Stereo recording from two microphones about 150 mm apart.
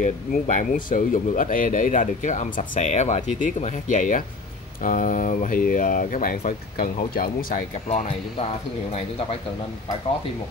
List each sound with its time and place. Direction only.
0.0 s speech: 55° left (ahead or behind)